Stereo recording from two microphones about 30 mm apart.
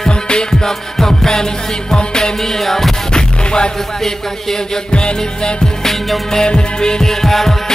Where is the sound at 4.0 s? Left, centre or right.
Centre.